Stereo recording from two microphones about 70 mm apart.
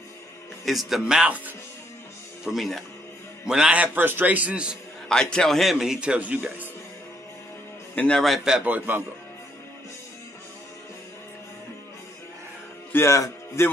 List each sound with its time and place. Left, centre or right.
0.7 s a man's voice: centre
2.4 s a man's voice: centre
5.0 s a man's voice: centre
5.9 s a man's voice: centre
7.9 s a man's voice: centre
8.6 s a man's voice: right
12.9 s speech: left